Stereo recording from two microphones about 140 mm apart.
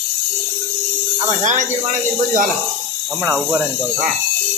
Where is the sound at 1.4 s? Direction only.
60° right (ahead or behind).